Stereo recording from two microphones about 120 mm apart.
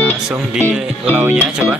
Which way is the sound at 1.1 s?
10° right (ahead or behind).